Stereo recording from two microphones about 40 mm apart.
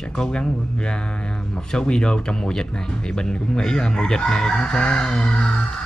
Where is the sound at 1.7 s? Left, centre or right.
Left.